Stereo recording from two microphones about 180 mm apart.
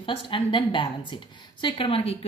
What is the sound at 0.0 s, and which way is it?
A woman's voice, 30° left (ahead or behind).